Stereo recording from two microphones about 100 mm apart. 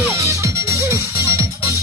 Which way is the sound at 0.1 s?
35° right (ahead or behind).